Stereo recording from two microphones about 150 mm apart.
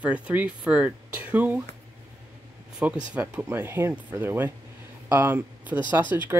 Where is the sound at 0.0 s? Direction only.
10° right (ahead or behind).